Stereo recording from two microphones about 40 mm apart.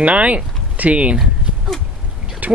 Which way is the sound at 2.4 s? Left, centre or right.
Right.